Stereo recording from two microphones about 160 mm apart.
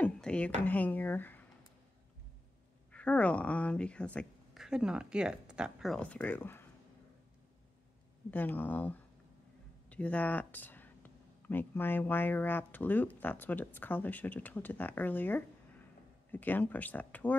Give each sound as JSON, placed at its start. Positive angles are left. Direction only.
{"t": 0.0, "sound": "a sound", "side_deg": 5}
{"t": 0.7, "sound": "speech", "side_deg": 10}
{"t": 2.9, "sound": "speech", "side_deg": 10}
{"t": 4.6, "sound": "speech", "side_deg": -5}
{"t": 8.3, "sound": "speech", "side_deg": 10}